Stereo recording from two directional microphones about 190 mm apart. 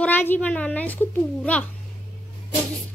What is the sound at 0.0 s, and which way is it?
A child's voice, 10° left (ahead or behind).